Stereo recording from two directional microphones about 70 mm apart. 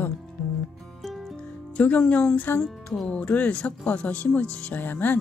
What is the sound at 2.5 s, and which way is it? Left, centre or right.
Music, centre.